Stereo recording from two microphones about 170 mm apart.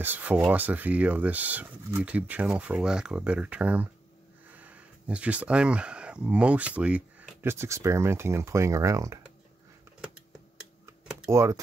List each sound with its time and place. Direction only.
0.0 s speech: 10° right (ahead or behind)
11.2 s speech: 15° right (ahead or behind)